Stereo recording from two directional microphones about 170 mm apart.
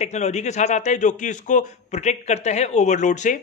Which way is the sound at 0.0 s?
40° left (ahead or behind).